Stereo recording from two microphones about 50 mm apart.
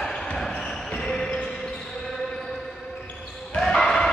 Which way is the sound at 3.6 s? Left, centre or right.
Centre.